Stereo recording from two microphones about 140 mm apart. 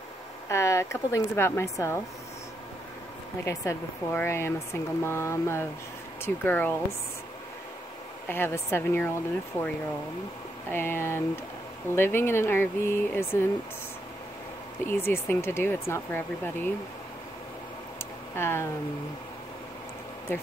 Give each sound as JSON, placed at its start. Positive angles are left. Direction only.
{"t": 0.5, "sound": "a woman's voice", "side_deg": 20}
{"t": 3.4, "sound": "a woman's voice", "side_deg": 20}
{"t": 8.3, "sound": "speech", "side_deg": 15}
{"t": 10.7, "sound": "speech", "side_deg": 15}
{"t": 14.9, "sound": "speech", "side_deg": 15}
{"t": 18.3, "sound": "speech", "side_deg": 15}
{"t": 20.3, "sound": "speech", "side_deg": 15}